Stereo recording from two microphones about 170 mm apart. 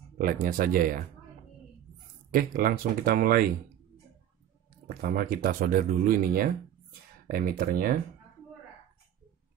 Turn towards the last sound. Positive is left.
turn(degrees=-55)  # may be behind; listen again after turning